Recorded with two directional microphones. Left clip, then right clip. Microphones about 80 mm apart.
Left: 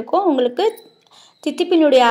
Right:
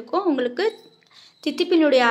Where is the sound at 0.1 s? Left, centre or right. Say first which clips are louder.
Left 6 dB; left.